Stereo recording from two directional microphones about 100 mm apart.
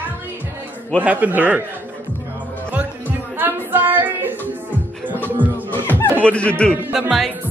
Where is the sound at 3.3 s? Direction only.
20° right (ahead or behind).